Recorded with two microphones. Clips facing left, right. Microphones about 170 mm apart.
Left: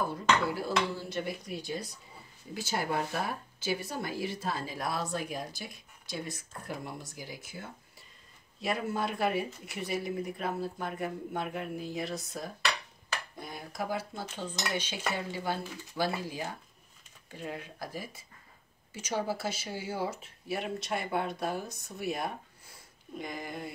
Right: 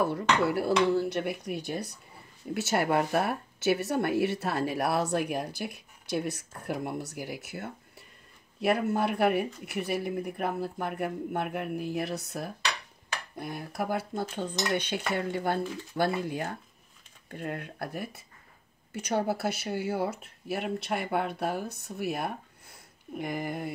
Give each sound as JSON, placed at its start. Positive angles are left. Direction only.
{"t": 0.0, "sound": "speech", "side_deg": -65}